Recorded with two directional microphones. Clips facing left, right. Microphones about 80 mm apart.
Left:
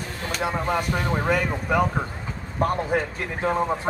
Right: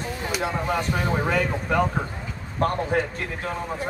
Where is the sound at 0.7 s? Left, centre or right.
Centre.